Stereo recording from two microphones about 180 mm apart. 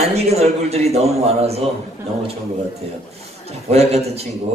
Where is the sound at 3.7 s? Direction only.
35° right (ahead or behind).